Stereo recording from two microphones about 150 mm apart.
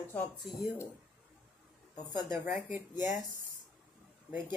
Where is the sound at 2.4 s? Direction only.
10° right (ahead or behind).